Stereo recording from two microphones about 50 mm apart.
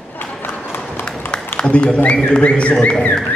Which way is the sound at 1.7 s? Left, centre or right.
Left.